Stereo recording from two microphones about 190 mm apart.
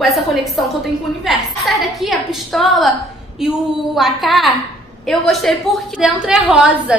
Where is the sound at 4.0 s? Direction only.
Centre (ahead or behind).